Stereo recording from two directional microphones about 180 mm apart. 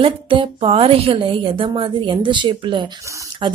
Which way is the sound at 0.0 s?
30° right (ahead or behind).